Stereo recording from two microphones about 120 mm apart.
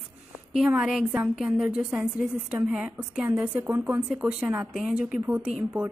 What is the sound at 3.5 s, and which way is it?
A woman's voice, 20° right (ahead or behind).